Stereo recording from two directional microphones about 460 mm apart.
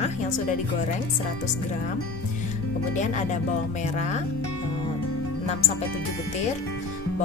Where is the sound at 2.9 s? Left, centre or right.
Centre.